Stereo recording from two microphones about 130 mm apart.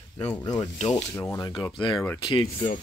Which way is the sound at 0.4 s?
25° left (ahead or behind).